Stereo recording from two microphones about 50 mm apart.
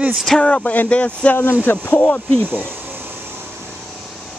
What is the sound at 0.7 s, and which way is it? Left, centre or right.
Speech, left.